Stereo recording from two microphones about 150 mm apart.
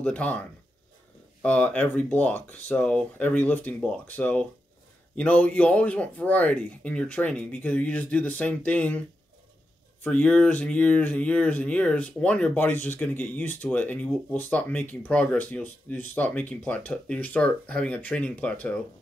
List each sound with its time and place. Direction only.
0.0 s speech: 10° left (ahead or behind)
10.0 s speech: 10° left (ahead or behind)